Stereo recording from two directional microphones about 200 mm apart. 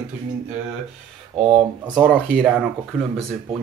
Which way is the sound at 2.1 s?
5° left (ahead or behind).